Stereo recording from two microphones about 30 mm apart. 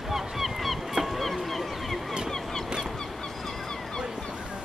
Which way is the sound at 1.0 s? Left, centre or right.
Centre.